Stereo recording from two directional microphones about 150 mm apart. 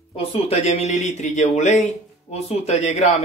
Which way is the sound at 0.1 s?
40° left (ahead or behind).